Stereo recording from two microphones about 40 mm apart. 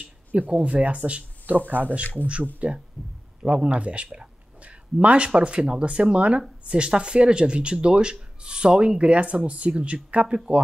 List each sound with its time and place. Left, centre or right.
0.3 s speech: right
1.7 s speech: right
2.4 s speech: right
3.4 s a sound: right
5.0 s speech: right
10.2 s speech: centre